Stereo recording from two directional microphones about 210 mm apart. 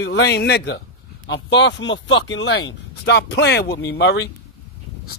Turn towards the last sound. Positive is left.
turn(degrees=60)  # may be behind; listen again after turning